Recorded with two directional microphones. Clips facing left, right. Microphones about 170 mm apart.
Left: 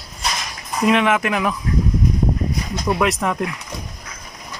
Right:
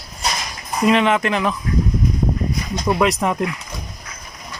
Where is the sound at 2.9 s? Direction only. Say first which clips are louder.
Right 2 dB; centre (ahead or behind).